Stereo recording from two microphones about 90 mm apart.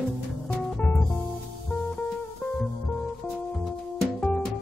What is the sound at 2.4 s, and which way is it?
Music, 15° left (ahead or behind).